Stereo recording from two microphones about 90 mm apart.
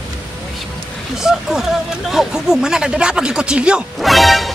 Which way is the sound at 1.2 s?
5° right (ahead or behind).